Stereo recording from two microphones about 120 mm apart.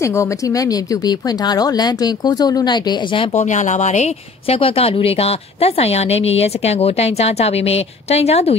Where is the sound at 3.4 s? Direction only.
90° left.